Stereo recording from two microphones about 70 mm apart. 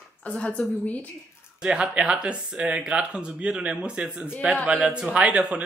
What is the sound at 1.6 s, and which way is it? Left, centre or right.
A man's voice, centre.